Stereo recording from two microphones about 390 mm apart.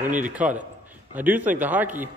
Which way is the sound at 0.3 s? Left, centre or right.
Centre.